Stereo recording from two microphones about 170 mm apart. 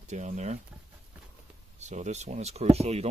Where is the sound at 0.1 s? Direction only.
45° right (ahead or behind).